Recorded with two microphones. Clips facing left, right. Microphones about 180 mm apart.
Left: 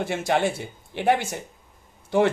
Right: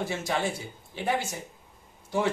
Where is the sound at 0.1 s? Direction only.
60° left (ahead or behind).